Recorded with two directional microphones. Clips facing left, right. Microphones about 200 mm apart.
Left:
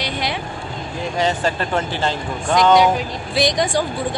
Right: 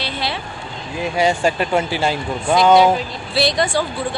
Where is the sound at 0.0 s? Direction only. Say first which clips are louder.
Left 1 dB; 15° left (ahead or behind).